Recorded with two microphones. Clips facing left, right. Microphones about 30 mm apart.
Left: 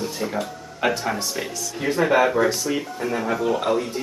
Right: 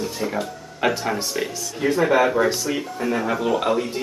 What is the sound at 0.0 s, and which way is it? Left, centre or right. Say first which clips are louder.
Speech: right 1 dB; centre.